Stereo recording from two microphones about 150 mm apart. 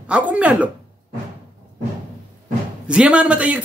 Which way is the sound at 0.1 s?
10° right (ahead or behind).